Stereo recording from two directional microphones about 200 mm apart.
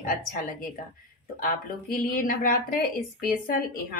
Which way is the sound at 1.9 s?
45° left (ahead or behind).